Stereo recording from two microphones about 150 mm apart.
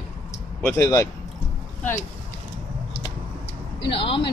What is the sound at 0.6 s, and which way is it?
Speech, 20° left (ahead or behind).